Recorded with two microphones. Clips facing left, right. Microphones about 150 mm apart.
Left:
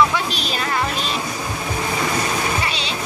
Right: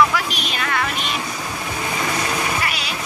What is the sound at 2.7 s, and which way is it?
Bleat, 25° left (ahead or behind).